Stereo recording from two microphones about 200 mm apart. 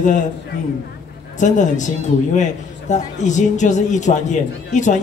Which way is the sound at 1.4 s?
40° left (ahead or behind).